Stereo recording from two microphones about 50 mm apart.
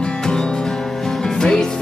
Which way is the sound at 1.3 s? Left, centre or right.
Centre.